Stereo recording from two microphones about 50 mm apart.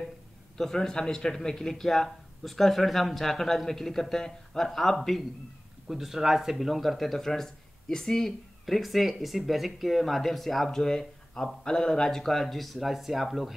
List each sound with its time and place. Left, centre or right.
0.6 s a man's voice: centre
5.9 s speech: centre